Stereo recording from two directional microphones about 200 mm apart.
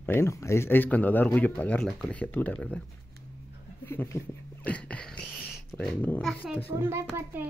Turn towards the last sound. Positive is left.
turn(degrees=-10)  # may be behind; listen again after turning